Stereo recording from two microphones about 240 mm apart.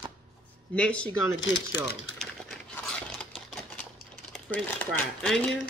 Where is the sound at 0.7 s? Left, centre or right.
Centre.